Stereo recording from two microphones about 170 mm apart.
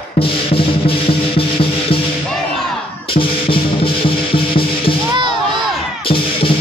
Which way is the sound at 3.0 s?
30° left (ahead or behind).